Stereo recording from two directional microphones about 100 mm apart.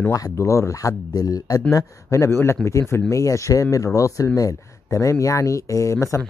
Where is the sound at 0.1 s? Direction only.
30° left (ahead or behind).